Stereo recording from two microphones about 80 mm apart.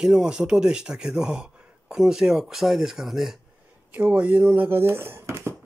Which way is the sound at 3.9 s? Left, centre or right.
Centre.